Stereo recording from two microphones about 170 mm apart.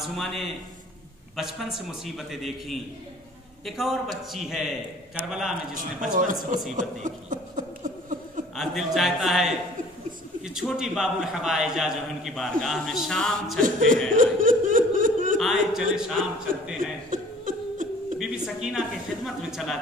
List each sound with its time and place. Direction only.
0.0 s a man's voice: centre (ahead or behind)
5.8 s laughter: 50° right (ahead or behind)
6.7 s a sound: 45° right (ahead or behind)
8.5 s a man's voice: centre (ahead or behind)
14.1 s laughter: 50° right (ahead or behind)
15.3 s a man's voice: centre (ahead or behind)
17.1 s chuckle: 50° right (ahead or behind)
18.2 s a man's voice: 5° right (ahead or behind)